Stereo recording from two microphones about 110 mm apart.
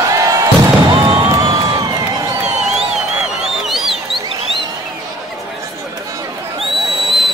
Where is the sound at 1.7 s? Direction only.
35° right (ahead or behind).